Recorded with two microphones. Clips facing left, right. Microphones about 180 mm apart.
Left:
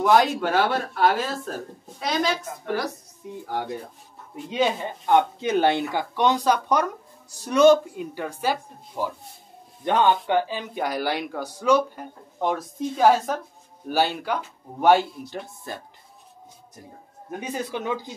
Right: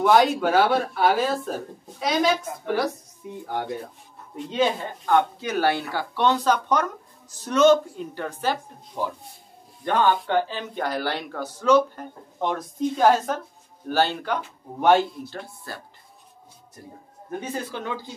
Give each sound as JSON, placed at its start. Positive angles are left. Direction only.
{"t": 0.0, "sound": "speech", "side_deg": 0}
{"t": 4.5, "sound": "speech", "side_deg": 15}
{"t": 15.2, "sound": "speech", "side_deg": 15}
{"t": 17.3, "sound": "speech", "side_deg": 15}